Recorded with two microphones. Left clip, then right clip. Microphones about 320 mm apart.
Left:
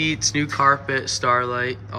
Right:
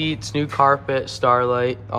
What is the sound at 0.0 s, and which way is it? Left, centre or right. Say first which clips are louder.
Speech: left 2 dB; centre.